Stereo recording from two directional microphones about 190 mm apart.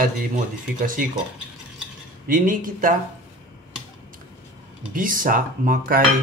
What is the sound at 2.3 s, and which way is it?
Speech, 45° right (ahead or behind).